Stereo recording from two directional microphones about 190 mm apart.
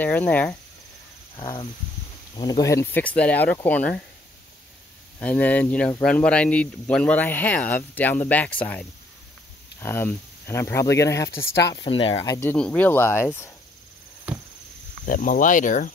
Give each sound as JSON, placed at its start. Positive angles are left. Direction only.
{"t": 0.0, "sound": "speech", "side_deg": 10}
{"t": 1.3, "sound": "speech", "side_deg": 20}
{"t": 5.2, "sound": "speech", "side_deg": 10}
{"t": 11.7, "sound": "speech", "side_deg": 25}
{"t": 12.3, "sound": "speech", "side_deg": 10}
{"t": 14.3, "sound": "a sound", "side_deg": -10}
{"t": 15.0, "sound": "speech", "side_deg": 45}